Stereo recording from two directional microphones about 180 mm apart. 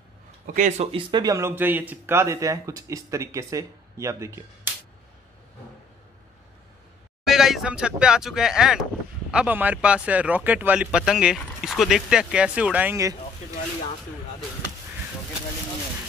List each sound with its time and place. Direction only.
0.6 s speech: 40° right (ahead or behind)
1.1 s speech: 20° right (ahead or behind)
7.2 s speech: centre (ahead or behind)